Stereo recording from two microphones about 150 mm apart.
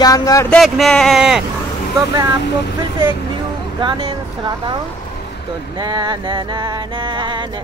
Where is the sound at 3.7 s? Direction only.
35° right (ahead or behind).